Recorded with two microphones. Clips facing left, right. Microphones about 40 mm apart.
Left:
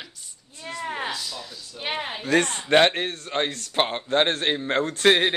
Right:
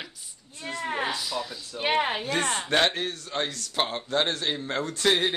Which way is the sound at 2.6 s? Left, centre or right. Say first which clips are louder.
Left 6 dB; left.